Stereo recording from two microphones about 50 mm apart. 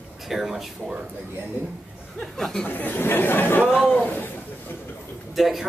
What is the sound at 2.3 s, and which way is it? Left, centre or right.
Speech, centre.